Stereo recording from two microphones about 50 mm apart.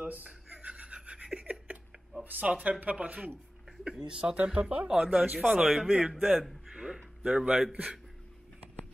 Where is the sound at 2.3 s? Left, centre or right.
Right.